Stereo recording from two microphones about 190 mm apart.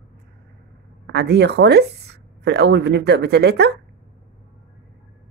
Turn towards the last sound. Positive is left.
turn(degrees=-60)  # may be behind; listen again after turning